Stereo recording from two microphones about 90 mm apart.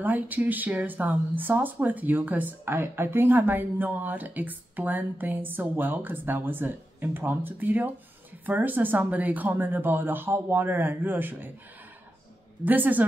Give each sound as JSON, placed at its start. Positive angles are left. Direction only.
{"t": 0.0, "sound": "speech", "side_deg": -20}
{"t": 12.6, "sound": "speech", "side_deg": -20}